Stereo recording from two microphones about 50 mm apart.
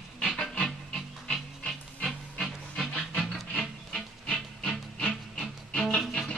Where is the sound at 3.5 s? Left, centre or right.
Centre.